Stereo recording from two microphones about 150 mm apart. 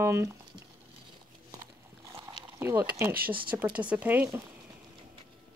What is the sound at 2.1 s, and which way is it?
Boiling, 15° right (ahead or behind).